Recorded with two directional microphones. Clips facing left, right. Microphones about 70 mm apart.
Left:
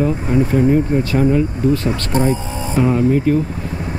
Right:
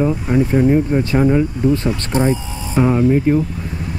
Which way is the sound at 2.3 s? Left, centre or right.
Left.